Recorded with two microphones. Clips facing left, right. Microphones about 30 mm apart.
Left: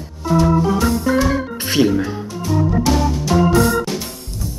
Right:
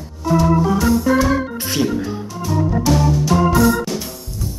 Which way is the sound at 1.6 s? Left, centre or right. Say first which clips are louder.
Left 4 dB; left.